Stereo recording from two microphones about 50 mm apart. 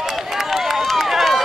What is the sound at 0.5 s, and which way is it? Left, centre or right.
Run, centre.